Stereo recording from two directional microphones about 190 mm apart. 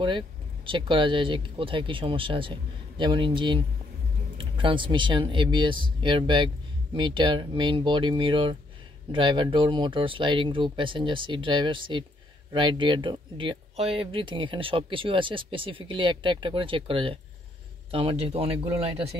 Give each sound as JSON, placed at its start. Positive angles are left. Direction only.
{"t": 0.7, "sound": "speech", "side_deg": -25}